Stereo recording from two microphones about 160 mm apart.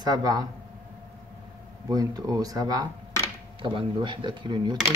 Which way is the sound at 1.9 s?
25° right (ahead or behind).